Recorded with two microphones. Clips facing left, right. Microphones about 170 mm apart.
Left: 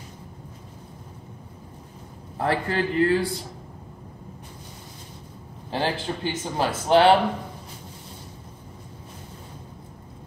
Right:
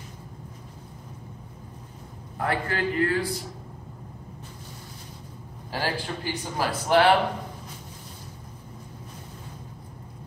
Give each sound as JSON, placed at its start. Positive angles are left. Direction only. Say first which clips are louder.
{"t": 2.3, "sound": "speech", "louder": "left 3 dB", "side_deg": 30}
{"t": 5.7, "sound": "speech", "louder": "left 3 dB", "side_deg": 25}